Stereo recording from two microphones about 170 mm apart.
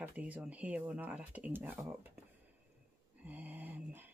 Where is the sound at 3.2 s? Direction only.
10° right (ahead or behind).